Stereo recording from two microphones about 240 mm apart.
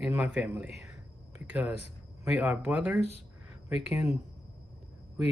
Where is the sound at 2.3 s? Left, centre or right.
Centre.